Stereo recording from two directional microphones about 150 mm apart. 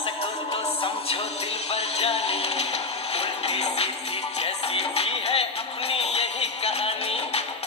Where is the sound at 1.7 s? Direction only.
45° left (ahead or behind).